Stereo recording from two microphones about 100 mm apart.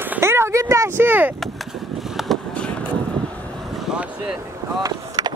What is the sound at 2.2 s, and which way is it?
Vehicle, 5° right (ahead or behind).